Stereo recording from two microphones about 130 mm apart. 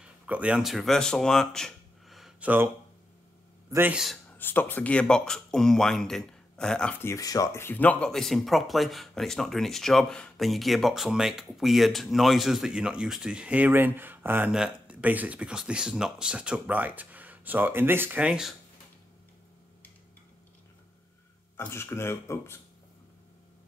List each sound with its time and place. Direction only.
0.0 s speech: 10° right (ahead or behind)
2.4 s speech: 15° right (ahead or behind)
3.7 s speech: 15° right (ahead or behind)
4.3 s speech: 15° left (ahead or behind); by 18.5 s 5° right (ahead or behind)
21.5 s speech: 20° left (ahead or behind)